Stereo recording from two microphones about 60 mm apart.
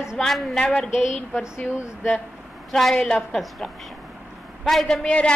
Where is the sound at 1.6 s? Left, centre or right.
Left.